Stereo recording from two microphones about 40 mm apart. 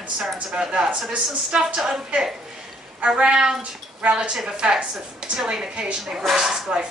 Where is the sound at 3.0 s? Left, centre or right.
Right.